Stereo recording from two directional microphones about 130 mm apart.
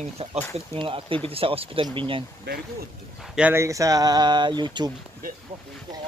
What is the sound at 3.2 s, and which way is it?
Speech, 5° right (ahead or behind).